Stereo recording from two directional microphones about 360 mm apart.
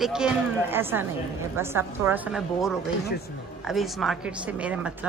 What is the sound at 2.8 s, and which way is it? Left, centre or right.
Speech, left.